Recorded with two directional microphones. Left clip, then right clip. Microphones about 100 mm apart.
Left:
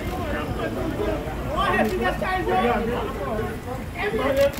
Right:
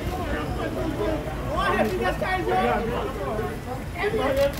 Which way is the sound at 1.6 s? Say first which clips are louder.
Left 1 dB; 15° right (ahead or behind).